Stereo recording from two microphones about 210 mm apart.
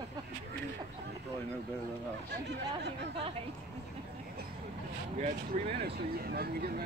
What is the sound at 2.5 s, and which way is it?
Speech, 55° right (ahead or behind).